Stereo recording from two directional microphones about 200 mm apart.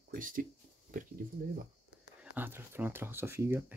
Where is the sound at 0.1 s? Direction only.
45° right (ahead or behind).